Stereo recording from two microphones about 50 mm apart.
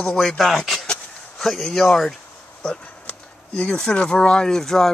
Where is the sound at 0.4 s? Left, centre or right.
Centre.